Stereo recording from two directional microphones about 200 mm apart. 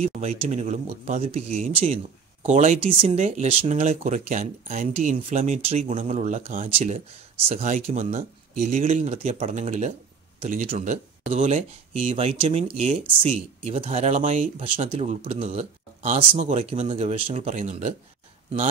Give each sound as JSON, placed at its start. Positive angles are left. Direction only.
{"t": 0.0, "sound": "speech", "side_deg": -30}